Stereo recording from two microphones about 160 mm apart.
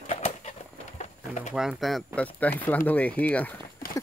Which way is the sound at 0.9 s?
50° left (ahead or behind).